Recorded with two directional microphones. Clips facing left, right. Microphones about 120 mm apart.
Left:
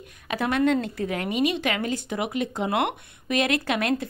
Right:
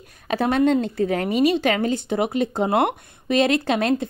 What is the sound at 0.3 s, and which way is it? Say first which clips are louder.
A woman's voice: right 4 dB; 30° right (ahead or behind).